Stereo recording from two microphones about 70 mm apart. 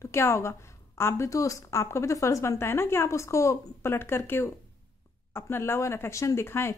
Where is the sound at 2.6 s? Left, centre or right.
Left.